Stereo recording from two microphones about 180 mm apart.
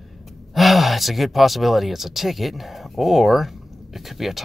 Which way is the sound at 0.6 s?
Centre (ahead or behind).